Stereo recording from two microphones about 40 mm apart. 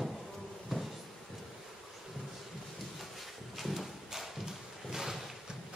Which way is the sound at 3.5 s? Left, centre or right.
Centre.